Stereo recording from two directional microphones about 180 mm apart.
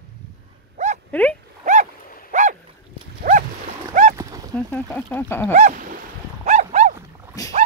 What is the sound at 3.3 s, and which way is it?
Dog, 45° right (ahead or behind).